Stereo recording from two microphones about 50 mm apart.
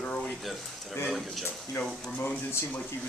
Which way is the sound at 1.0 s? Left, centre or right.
Centre.